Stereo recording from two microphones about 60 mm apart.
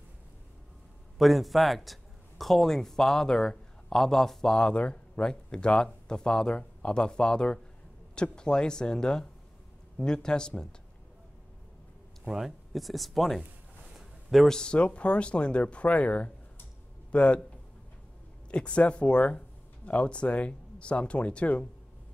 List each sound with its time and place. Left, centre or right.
1.1 s a man's voice: centre
12.3 s speech: centre
13.9 s a sound: centre
14.5 s speech: centre
18.5 s speech: centre